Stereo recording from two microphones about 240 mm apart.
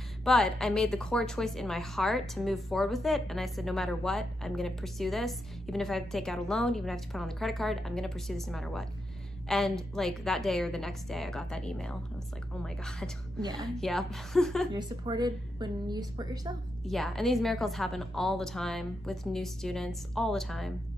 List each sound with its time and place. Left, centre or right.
0.2 s a woman's voice: centre
13.4 s a woman's voice: centre
13.7 s a woman's voice: centre
14.7 s a woman's voice: centre
16.8 s a woman's voice: centre